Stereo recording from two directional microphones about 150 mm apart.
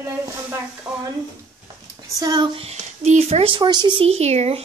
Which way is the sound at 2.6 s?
45° right (ahead or behind).